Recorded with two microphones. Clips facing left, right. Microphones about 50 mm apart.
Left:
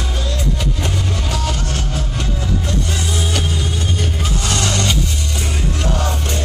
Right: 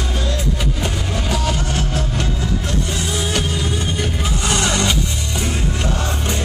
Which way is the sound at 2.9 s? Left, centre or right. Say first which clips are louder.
Even; centre.